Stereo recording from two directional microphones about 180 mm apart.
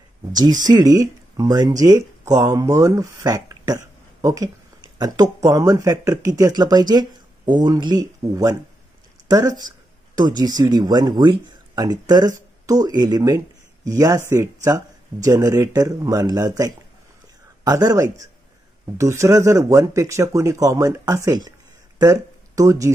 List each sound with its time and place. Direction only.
0.3 s speech: 20° right (ahead or behind)